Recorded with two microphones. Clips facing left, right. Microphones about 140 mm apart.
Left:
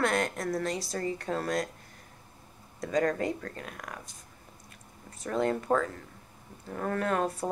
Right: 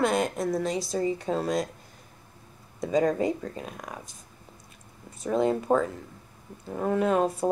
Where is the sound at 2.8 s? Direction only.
10° right (ahead or behind).